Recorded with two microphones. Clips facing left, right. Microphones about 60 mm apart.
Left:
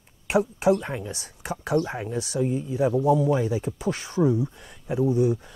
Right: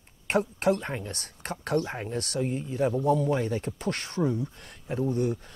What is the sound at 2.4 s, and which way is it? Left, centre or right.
Speech, right.